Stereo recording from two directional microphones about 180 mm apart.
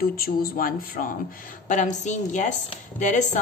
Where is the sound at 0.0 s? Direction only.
55° left (ahead or behind).